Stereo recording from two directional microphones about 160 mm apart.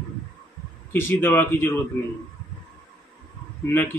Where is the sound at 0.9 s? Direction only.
15° left (ahead or behind).